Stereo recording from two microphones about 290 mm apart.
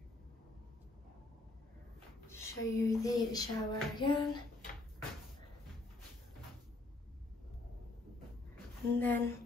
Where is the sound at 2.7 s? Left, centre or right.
Centre.